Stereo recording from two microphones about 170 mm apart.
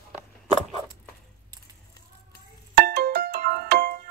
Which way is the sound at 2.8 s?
65° right (ahead or behind).